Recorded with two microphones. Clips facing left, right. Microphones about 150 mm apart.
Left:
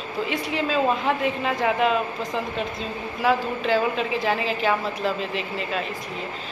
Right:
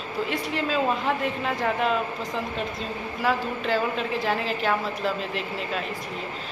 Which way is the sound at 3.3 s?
Centre (ahead or behind).